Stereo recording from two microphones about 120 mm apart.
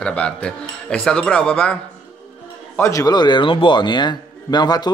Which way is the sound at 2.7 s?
25° left (ahead or behind).